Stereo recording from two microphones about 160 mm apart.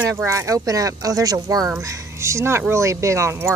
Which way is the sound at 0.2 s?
20° right (ahead or behind).